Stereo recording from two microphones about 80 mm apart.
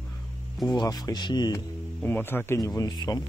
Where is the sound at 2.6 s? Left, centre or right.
Left.